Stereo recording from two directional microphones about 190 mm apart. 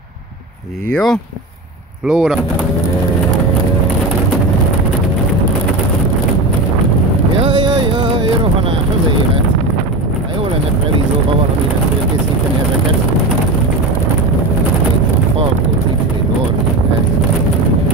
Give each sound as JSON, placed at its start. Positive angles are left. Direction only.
{"t": 0.9, "sound": "speech", "side_deg": 5}
{"t": 7.4, "sound": "music", "side_deg": -25}